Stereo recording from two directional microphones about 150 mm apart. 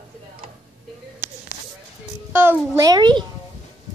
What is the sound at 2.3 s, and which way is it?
Speech, 15° right (ahead or behind).